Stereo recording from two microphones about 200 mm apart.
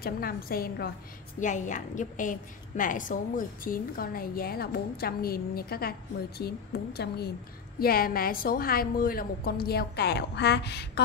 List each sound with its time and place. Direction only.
0.0 s a woman's voice: 45° left (ahead or behind)
1.4 s a woman's voice: 40° left (ahead or behind); by 10.9 s 55° left (ahead or behind)